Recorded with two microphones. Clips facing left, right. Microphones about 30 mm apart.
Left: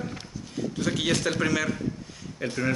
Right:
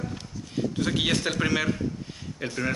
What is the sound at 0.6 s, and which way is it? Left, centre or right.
Speech, centre.